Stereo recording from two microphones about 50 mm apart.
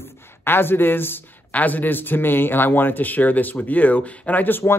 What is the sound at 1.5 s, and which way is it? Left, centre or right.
Speech, left.